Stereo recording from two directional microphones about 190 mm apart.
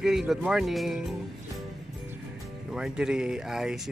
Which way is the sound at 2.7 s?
5° right (ahead or behind).